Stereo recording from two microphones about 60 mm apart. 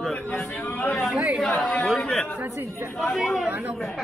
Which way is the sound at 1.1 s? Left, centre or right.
Centre.